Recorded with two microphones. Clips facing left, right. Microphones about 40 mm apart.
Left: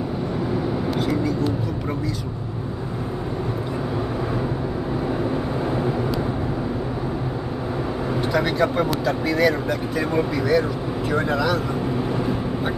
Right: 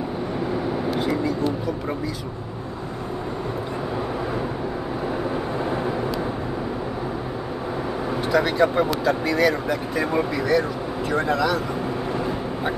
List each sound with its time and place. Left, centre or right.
8.3 s speech: centre